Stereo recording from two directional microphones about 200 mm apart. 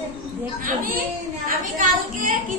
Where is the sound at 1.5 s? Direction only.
45° right (ahead or behind).